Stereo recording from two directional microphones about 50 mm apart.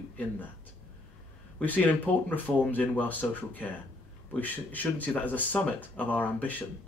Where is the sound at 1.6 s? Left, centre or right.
Left.